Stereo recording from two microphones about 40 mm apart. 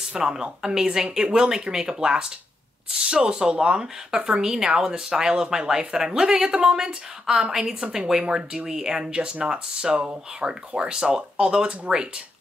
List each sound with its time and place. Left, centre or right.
0.2 s speech: centre
4.4 s speech: centre
6.8 s speech: centre
8.2 s speech: right